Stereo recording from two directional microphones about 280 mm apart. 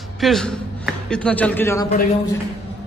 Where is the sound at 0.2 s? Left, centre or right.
Centre.